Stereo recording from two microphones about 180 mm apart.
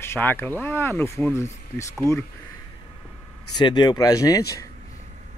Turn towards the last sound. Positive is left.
turn(degrees=20)  # may be behind; listen again after turning